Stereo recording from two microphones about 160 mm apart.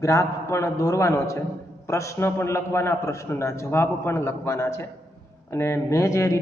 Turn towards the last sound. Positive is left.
turn(degrees=20)  # may be behind; listen again after turning